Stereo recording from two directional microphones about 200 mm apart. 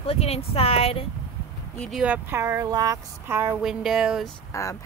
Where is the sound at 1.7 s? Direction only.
Centre (ahead or behind).